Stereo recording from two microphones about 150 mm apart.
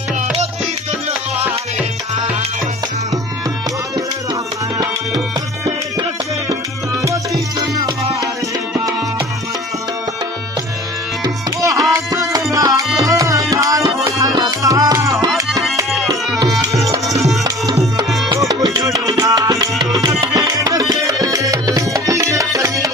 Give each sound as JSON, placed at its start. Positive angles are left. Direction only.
{"t": 7.1, "sound": "music", "side_deg": -25}
{"t": 11.2, "sound": "music", "side_deg": -20}
{"t": 16.5, "sound": "music", "side_deg": 0}
{"t": 18.5, "sound": "music", "side_deg": -25}